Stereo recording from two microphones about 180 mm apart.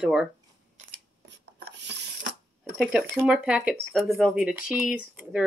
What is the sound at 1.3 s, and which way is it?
Rub, 70° right (ahead or behind).